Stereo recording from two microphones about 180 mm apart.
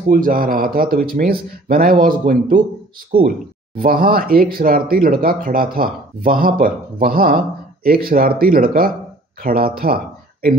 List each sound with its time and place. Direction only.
0.1 s speech: 50° right (ahead or behind)